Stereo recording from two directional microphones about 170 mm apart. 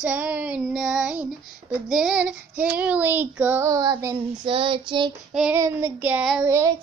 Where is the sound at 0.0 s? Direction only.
10° right (ahead or behind).